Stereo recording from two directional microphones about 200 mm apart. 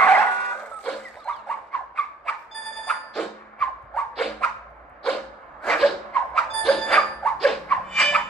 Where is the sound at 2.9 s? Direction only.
Centre (ahead or behind).